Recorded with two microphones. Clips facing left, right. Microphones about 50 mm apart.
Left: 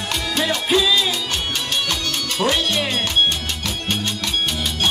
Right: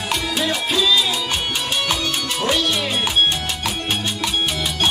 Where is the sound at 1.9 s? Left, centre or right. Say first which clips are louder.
Right 2 dB; centre.